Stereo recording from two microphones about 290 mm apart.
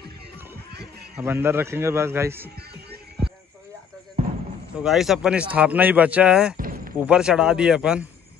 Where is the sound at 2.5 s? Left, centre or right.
Right.